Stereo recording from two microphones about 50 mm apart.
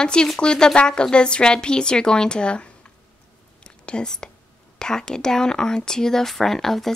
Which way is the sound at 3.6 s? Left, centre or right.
Centre.